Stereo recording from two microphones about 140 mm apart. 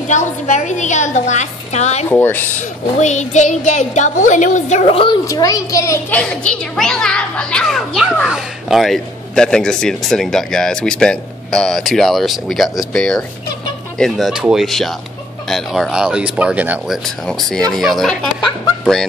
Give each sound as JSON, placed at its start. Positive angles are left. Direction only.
{"t": 0.1, "sound": "speech", "side_deg": 60}
{"t": 2.0, "sound": "speech", "side_deg": 15}
{"t": 3.0, "sound": "speech", "side_deg": 60}
{"t": 4.9, "sound": "a woman's voice", "side_deg": 40}
{"t": 5.2, "sound": "a child's voice", "side_deg": 25}
{"t": 6.0, "sound": "a child's voice", "side_deg": 10}